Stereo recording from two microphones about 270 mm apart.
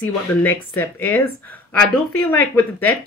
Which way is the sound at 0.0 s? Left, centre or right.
Centre.